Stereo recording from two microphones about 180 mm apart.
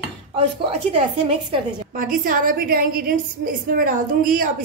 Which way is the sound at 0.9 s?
30° right (ahead or behind).